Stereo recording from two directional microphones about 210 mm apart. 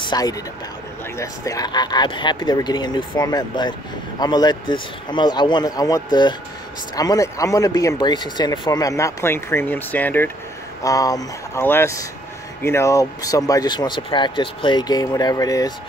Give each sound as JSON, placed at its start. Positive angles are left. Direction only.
{"t": 0.0, "sound": "speech", "side_deg": 20}